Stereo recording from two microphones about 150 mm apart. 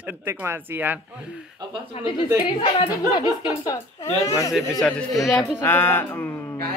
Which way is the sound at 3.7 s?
20° left (ahead or behind).